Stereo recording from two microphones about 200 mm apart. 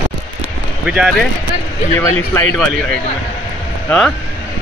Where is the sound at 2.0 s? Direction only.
10° left (ahead or behind).